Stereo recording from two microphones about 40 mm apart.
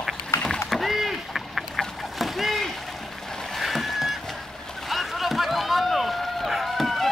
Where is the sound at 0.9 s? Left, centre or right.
Centre.